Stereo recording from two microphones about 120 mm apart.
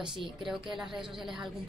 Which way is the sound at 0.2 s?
Centre (ahead or behind).